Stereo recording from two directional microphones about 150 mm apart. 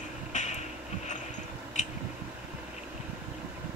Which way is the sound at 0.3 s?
55° left (ahead or behind).